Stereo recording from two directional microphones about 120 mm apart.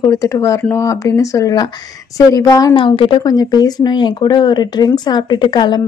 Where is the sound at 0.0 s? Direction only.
25° left (ahead or behind).